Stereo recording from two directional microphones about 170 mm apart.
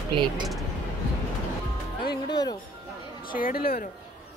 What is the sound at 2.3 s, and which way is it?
Music, 25° left (ahead or behind).